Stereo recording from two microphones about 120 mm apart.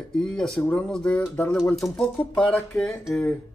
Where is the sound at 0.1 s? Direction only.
5° left (ahead or behind).